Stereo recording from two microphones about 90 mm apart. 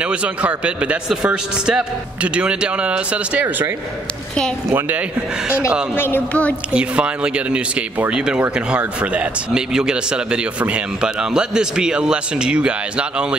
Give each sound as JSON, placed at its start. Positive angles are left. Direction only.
{"t": 0.0, "sound": "speech", "side_deg": -15}
{"t": 5.9, "sound": "speech", "side_deg": 25}
{"t": 6.7, "sound": "speech", "side_deg": -10}